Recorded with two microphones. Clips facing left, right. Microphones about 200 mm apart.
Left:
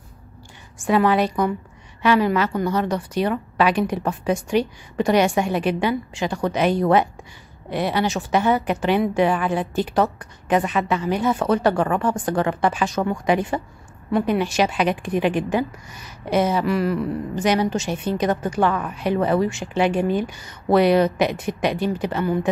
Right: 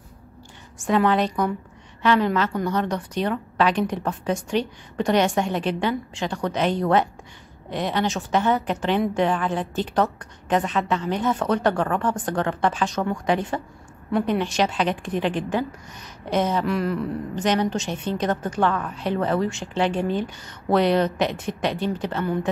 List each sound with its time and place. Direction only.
0.8 s a woman's voice: 5° left (ahead or behind)